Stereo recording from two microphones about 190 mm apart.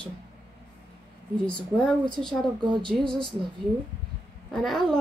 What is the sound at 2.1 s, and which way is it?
Speech, 5° left (ahead or behind).